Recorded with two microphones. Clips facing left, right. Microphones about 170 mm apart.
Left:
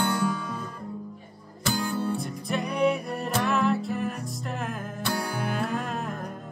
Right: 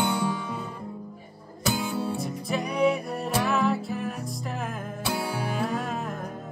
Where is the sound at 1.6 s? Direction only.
Centre (ahead or behind).